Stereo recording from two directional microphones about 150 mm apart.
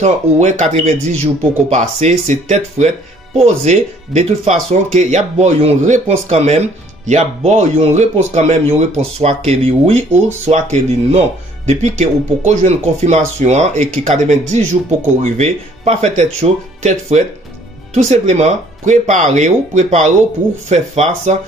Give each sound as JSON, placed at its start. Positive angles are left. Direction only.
{"t": 0.0, "sound": "speech", "side_deg": -50}